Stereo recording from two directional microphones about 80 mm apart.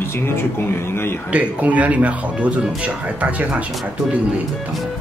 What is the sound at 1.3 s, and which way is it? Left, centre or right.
Speech, centre.